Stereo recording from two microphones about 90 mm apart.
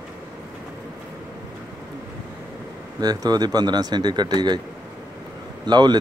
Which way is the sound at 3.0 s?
50° right (ahead or behind).